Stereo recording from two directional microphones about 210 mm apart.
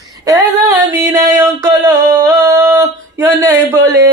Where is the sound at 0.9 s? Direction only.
15° right (ahead or behind).